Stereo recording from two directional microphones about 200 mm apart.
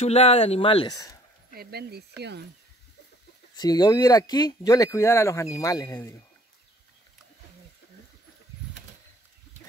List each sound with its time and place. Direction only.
0.0 s speech: 30° left (ahead or behind)
1.5 s speech: 50° right (ahead or behind)
3.5 s speech: 20° left (ahead or behind)